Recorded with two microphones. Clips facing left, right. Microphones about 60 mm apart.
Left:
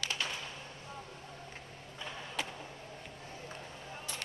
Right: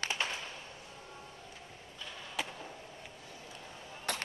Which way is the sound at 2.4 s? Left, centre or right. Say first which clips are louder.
Right 1 dB; centre.